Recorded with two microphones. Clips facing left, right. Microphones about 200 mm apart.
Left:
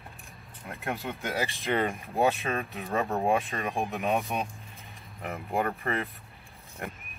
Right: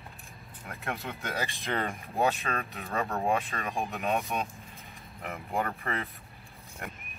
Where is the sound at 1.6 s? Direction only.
15° left (ahead or behind).